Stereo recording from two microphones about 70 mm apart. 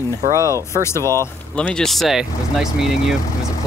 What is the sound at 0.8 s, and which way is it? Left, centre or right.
Speech, left.